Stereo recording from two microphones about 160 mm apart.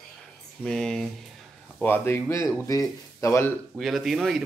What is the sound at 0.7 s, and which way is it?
Speech, 5° left (ahead or behind).